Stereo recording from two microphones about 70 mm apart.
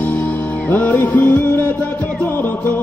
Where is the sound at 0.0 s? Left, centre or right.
Left.